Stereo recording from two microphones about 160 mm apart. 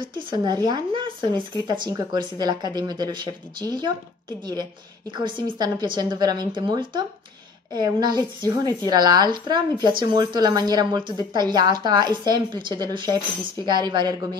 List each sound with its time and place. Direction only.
0.3 s speech: 25° right (ahead or behind)